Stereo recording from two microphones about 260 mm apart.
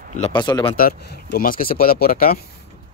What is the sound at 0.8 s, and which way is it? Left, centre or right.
Speech, left.